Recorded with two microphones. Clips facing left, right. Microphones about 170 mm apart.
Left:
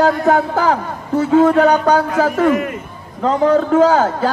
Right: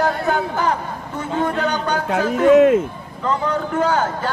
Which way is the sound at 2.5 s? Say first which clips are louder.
Right 6 dB; 75° right (ahead or behind).